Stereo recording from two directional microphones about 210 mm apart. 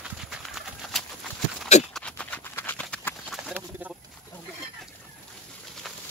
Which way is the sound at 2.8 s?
Centre (ahead or behind).